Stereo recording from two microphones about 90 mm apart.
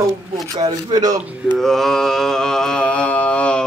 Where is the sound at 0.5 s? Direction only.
50° right (ahead or behind).